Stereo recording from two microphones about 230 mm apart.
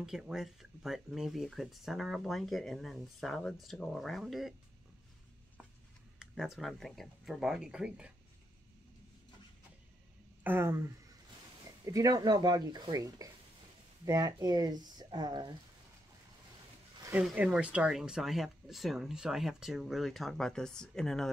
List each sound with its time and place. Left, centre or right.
0.0 s speech: centre
6.1 s speech: centre
10.4 s speech: centre
11.8 s speech: centre
17.0 s speech: centre